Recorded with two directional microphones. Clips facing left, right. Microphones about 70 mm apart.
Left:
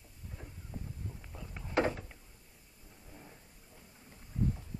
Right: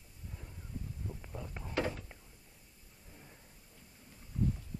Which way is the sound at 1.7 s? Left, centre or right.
Left.